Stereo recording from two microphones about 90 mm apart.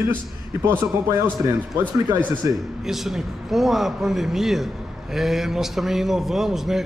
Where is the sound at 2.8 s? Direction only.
5° right (ahead or behind).